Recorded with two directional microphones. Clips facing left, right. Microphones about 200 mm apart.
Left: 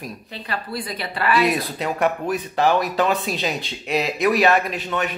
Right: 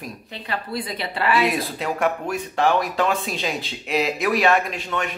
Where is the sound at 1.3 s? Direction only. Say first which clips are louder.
Left 2 dB; centre (ahead or behind).